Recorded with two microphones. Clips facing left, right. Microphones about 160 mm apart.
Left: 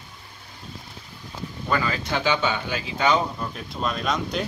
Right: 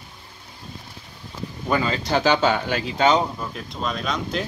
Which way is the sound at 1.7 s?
25° right (ahead or behind).